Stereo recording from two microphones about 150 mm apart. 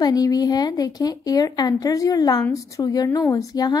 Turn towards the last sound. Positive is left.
turn(degrees=25)  # may be behind; listen again after turning